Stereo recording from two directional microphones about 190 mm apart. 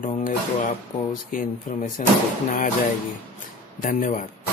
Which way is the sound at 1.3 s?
45° left (ahead or behind).